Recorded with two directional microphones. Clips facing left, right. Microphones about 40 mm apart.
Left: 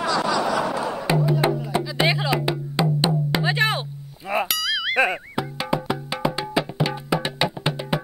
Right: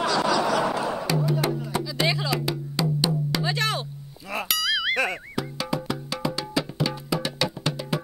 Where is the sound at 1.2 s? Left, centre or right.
Left.